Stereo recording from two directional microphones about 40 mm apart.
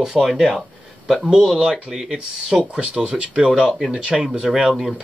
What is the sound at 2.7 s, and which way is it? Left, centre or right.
Speech, right.